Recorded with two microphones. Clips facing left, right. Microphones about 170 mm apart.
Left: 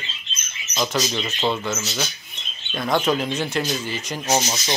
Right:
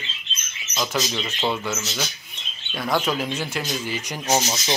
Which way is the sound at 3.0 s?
5° right (ahead or behind).